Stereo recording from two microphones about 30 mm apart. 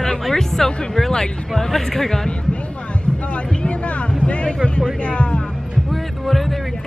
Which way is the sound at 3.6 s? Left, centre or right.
Left.